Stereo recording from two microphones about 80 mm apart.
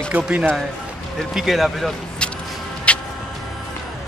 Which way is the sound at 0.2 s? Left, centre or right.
Centre.